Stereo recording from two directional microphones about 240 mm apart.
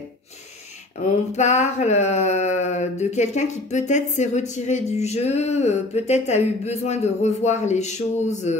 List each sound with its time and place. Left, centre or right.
1.3 s speech: left